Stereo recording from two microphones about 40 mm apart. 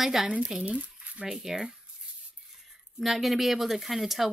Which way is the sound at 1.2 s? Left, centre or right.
Centre.